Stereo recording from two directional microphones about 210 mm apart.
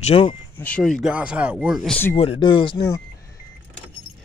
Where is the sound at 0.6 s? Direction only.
5° left (ahead or behind).